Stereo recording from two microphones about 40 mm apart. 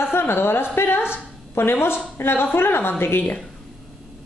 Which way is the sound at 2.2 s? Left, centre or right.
Left.